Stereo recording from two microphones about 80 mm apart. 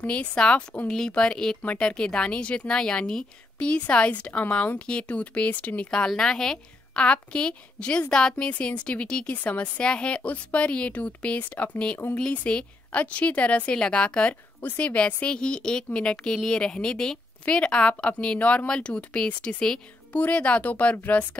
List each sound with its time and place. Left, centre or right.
0.0 s speech: centre